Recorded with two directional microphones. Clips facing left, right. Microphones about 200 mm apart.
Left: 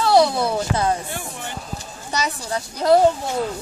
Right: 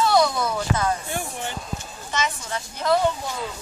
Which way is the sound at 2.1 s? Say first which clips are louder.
Left 3 dB; 40° left (ahead or behind).